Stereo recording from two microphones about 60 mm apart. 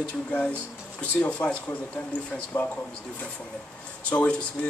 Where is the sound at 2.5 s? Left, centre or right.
Left.